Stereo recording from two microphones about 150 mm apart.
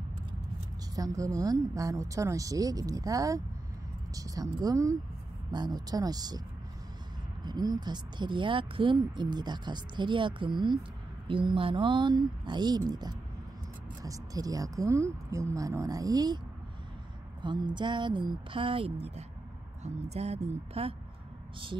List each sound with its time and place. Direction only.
0.9 s a woman's voice: 25° right (ahead or behind)
7.4 s a woman's voice: 25° right (ahead or behind)
17.4 s speech: 30° right (ahead or behind)